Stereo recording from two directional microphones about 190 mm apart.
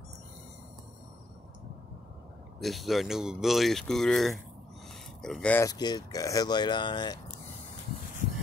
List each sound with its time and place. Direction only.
2.6 s speech: centre (ahead or behind); by 7.2 s 25° left (ahead or behind)